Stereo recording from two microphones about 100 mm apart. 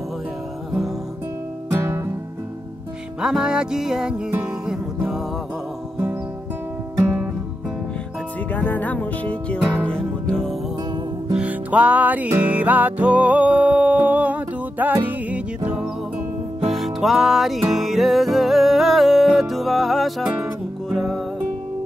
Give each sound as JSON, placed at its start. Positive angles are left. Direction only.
{"t": 1.7, "sound": "music", "side_deg": -25}
{"t": 3.2, "sound": "music", "side_deg": -5}
{"t": 8.5, "sound": "music", "side_deg": 15}
{"t": 11.3, "sound": "music", "side_deg": -15}